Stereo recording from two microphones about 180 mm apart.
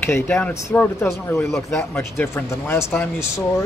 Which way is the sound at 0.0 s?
10° left (ahead or behind).